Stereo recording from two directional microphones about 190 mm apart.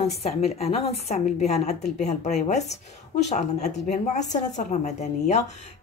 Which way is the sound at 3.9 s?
40° left (ahead or behind).